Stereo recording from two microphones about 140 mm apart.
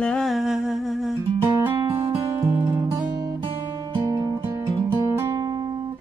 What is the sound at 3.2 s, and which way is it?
Guitar, 20° right (ahead or behind).